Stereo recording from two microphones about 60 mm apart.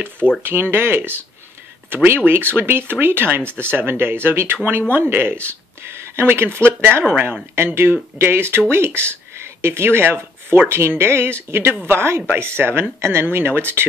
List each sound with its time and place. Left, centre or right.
0.4 s speech: right